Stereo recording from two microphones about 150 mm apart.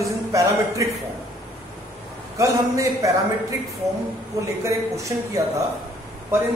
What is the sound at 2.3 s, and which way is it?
A man's voice, 20° right (ahead or behind).